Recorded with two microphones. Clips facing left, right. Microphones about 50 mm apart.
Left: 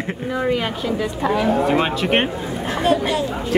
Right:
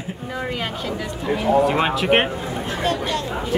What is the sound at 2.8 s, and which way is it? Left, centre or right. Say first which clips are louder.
Speech: left 5 dB; centre.